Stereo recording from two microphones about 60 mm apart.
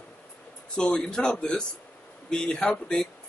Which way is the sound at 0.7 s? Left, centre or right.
Centre.